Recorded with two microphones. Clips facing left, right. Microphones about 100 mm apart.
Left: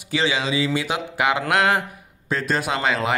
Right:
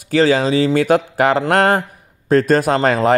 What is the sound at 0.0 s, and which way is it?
A man's voice, 45° right (ahead or behind).